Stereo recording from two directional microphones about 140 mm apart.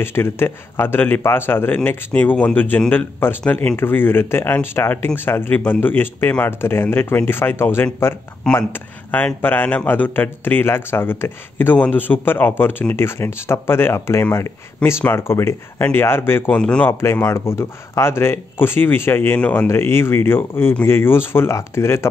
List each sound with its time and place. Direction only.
0.0 s a man's voice: 15° left (ahead or behind)
17.0 s a man's voice: 20° left (ahead or behind)